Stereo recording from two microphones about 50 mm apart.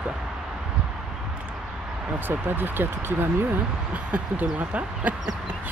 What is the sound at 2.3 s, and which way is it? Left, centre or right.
Speech, right.